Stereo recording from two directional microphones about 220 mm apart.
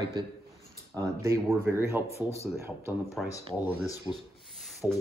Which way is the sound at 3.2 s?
Centre (ahead or behind).